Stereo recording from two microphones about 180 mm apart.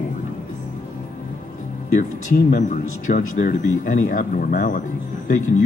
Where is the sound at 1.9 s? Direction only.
45° left (ahead or behind).